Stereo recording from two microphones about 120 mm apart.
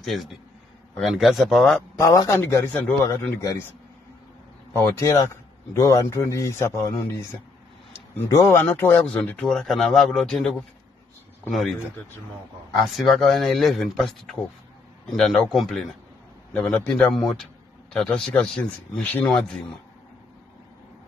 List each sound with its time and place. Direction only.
0.0 s speech: centre (ahead or behind)
2.0 s a man's voice: 30° left (ahead or behind)
4.7 s a man's voice: 25° left (ahead or behind); by 10.5 s 5° left (ahead or behind)
12.7 s speech: centre (ahead or behind)
16.5 s speech: 10° left (ahead or behind)